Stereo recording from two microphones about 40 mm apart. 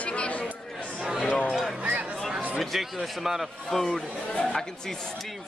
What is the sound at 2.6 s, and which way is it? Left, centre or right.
Speech, centre.